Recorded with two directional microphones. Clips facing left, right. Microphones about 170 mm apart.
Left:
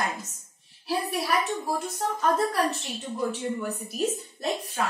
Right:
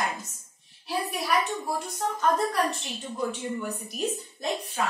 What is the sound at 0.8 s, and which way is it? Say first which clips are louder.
A woman's voice: left 1 dB; centre (ahead or behind).